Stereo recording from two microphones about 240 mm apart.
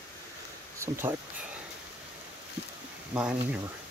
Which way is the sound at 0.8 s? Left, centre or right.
Centre.